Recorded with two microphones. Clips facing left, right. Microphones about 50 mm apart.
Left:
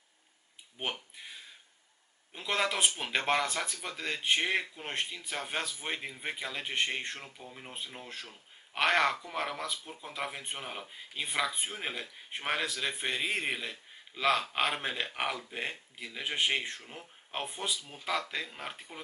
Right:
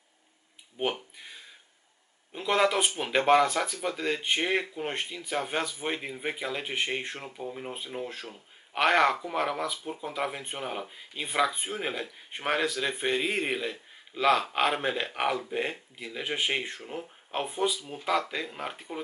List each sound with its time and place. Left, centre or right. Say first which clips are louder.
0.8 s speech: right 7 dB; centre
1.1 s a sound: right 1 dB; centre
2.3 s speech: right 7 dB; centre
17.7 s speech: right 6 dB; centre